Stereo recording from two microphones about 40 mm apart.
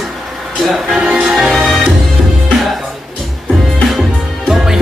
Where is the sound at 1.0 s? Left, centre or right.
Right.